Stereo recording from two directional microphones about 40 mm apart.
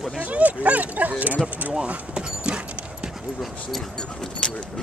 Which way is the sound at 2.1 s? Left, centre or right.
Right.